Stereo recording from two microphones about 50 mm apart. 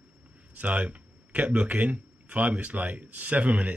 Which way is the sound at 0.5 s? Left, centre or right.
Right.